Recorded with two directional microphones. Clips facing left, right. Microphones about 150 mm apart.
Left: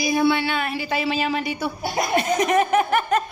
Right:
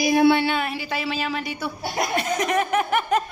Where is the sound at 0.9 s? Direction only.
15° left (ahead or behind).